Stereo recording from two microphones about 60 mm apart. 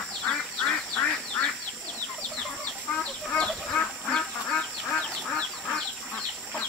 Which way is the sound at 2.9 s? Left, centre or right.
Centre.